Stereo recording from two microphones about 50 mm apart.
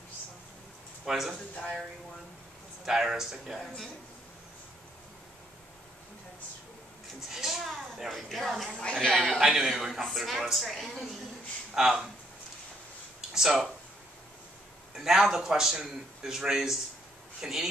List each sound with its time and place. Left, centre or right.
1.0 s speech: centre
1.3 s a man's voice: left
2.8 s speech: centre
3.5 s speech: centre
7.2 s speech: centre
9.4 s speech: centre
11.7 s speech: centre
13.3 s speech: centre
15.0 s speech: centre